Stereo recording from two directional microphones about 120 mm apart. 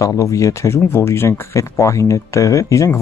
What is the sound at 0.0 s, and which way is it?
Speech, 25° left (ahead or behind).